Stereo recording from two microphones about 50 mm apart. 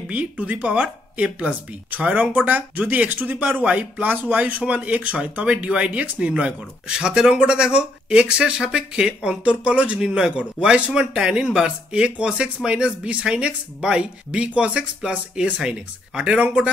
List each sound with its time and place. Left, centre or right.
0.1 s speech: right